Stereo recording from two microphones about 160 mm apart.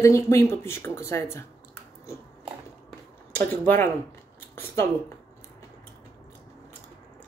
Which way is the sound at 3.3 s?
10° left (ahead or behind).